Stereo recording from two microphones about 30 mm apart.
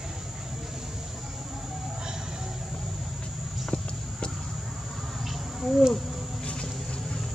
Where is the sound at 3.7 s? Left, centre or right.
Left.